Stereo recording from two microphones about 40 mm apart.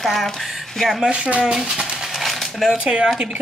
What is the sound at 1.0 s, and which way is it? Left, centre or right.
Speech, right.